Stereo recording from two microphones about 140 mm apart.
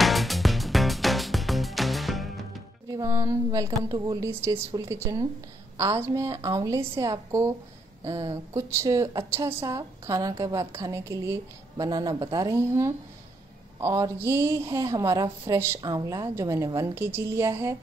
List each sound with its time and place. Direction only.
0.0 s music: centre (ahead or behind)
2.9 s a sound: 25° right (ahead or behind)
3.9 s a woman's voice: 20° right (ahead or behind)
6.5 s a woman's voice: 20° right (ahead or behind)